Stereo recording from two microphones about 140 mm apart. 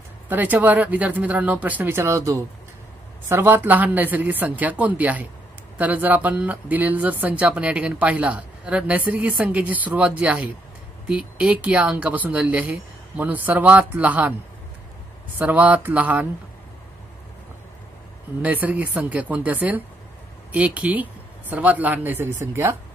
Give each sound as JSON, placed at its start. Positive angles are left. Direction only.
{"t": 0.3, "sound": "speech", "side_deg": -10}
{"t": 15.3, "sound": "speech", "side_deg": -10}
{"t": 18.4, "sound": "speech", "side_deg": -10}